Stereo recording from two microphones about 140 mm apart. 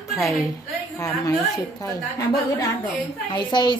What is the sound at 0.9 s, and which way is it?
A woman's voice, 25° left (ahead or behind).